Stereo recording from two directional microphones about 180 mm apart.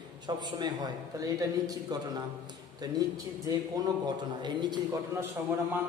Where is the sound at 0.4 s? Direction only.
20° right (ahead or behind).